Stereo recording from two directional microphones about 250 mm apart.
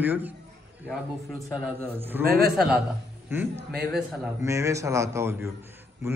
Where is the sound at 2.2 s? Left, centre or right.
Right.